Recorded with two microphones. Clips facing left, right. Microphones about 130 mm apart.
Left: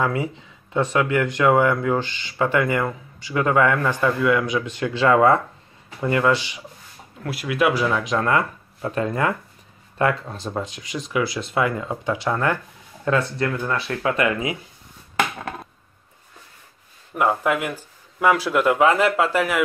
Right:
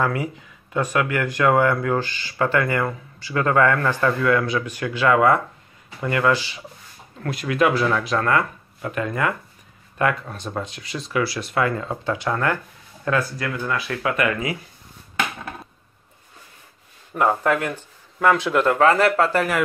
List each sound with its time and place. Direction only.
0.0 s speech: 25° left (ahead or behind)
7.2 s speech: 5° left (ahead or behind); by 14.6 s 25° left (ahead or behind)
17.1 s speech: 5° left (ahead or behind)